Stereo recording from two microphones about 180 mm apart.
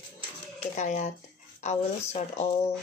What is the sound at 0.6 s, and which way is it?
Speech, 40° left (ahead or behind).